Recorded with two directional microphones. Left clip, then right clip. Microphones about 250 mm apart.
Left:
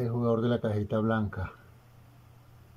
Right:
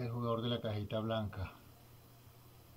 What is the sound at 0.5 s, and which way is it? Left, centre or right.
Speech, left.